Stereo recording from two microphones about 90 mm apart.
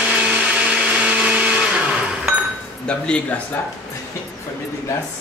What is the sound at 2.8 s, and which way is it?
Speech, 10° left (ahead or behind).